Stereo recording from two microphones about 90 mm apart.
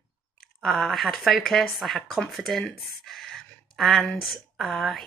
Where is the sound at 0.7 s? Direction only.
Centre (ahead or behind).